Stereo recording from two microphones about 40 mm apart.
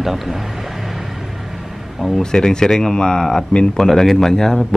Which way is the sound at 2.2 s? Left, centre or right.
Centre.